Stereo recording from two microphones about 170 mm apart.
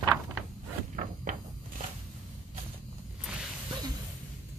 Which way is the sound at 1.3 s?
50° right (ahead or behind).